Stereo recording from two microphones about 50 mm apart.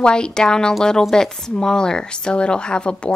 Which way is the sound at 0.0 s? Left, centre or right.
Centre.